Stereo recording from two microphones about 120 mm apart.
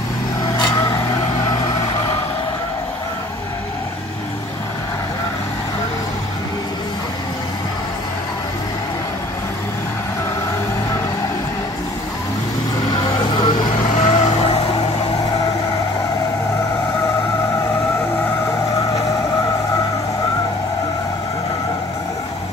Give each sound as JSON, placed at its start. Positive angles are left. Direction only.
{"t": 0.6, "sound": "vehicle", "side_deg": 35}
{"t": 13.9, "sound": "vehicle", "side_deg": 65}